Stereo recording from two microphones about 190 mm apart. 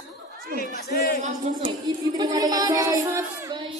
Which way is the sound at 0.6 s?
55° left (ahead or behind).